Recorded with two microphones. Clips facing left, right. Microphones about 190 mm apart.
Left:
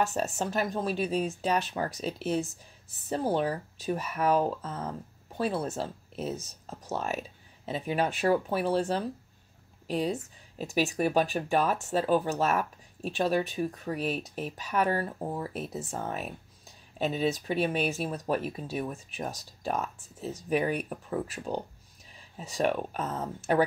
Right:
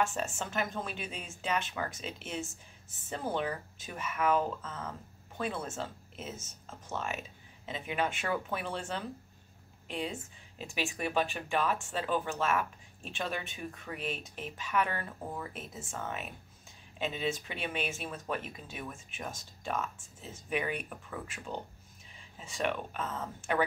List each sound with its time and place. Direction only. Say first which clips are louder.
0.0 s speech: left 4 dB; 35° left (ahead or behind)